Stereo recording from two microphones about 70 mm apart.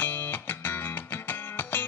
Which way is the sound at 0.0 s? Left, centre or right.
Left.